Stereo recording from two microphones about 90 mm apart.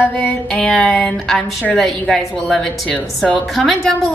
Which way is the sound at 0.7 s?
5° left (ahead or behind).